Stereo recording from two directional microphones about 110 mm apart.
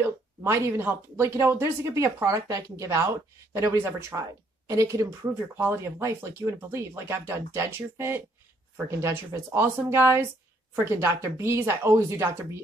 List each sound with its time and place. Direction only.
0.4 s speech: 25° right (ahead or behind)